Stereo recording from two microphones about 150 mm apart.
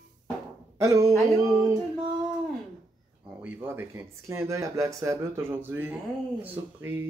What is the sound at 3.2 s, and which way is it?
Speech, 10° right (ahead or behind).